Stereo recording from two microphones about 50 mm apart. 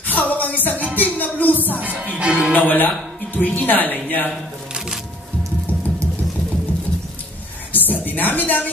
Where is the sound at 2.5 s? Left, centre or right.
Left.